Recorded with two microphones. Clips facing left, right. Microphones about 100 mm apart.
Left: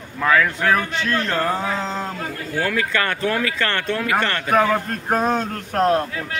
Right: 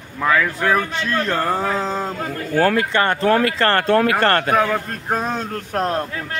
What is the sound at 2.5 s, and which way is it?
Speech, 45° right (ahead or behind).